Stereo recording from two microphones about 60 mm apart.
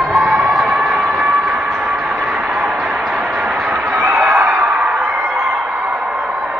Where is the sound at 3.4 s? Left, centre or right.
Centre.